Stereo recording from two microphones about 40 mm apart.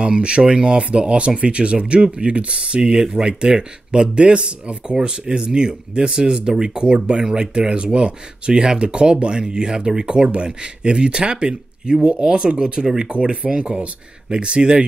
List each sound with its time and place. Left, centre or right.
0.0 s speech: right